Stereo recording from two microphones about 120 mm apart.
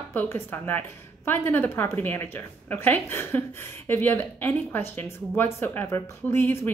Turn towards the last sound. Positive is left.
turn(degrees=20)  # may be behind; listen again after turning